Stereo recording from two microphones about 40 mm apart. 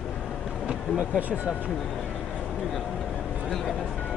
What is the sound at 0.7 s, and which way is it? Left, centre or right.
Vehicle, right.